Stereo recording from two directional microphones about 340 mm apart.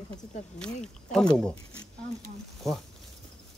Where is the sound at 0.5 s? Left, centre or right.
Centre.